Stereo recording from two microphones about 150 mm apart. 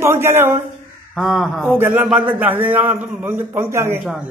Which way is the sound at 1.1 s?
Centre (ahead or behind).